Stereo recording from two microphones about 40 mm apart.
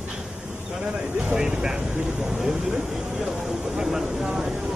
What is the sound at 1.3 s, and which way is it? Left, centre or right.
Speech, centre.